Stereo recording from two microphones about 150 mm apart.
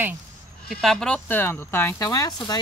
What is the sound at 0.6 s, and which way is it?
Speech, centre (ahead or behind).